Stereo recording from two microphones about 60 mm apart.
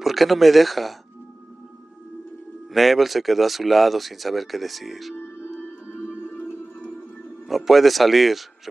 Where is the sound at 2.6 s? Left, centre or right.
Centre.